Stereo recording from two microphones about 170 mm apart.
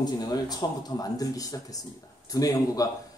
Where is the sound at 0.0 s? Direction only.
25° left (ahead or behind).